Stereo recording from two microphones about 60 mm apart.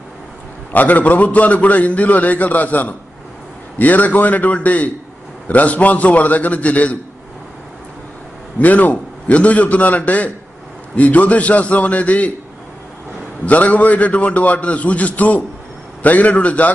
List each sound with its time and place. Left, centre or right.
0.7 s a man's voice: left
8.5 s a man's voice: left
13.5 s a man's voice: left